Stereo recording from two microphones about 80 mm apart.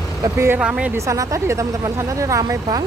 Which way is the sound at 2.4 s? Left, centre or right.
Right.